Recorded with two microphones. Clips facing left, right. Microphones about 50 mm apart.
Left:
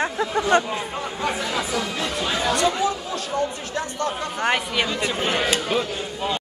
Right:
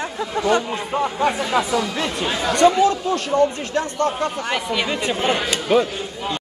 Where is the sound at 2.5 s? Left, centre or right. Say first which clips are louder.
Right 10 dB; right.